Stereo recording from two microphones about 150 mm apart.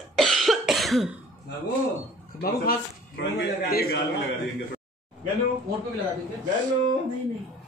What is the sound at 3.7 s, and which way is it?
Speech, 90° left.